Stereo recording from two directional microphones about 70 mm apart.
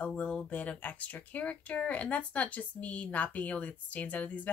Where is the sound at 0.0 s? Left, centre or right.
Centre.